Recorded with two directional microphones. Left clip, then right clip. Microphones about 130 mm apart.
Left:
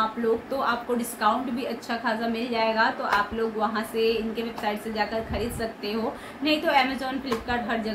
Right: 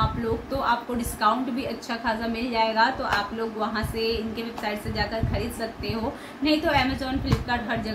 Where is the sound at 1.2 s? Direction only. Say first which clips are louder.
Right 2 dB; centre (ahead or behind).